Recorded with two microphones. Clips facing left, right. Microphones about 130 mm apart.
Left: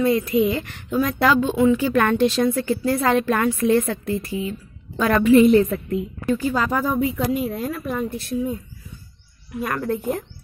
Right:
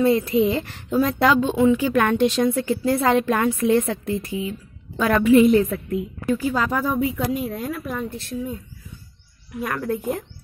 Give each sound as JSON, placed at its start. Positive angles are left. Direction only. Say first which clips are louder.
{"t": 0.0, "sound": "a woman's voice", "louder": "right 1 dB", "side_deg": -30}
{"t": 1.0, "sound": "a woman's voice", "louder": "even", "side_deg": -20}
{"t": 9.6, "sound": "a woman's voice", "louder": "left 1 dB", "side_deg": 0}